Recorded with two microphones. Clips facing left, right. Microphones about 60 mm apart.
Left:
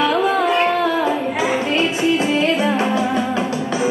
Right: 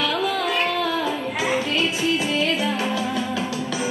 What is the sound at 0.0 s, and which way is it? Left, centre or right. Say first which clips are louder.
Carnatic music: left 6 dB; left.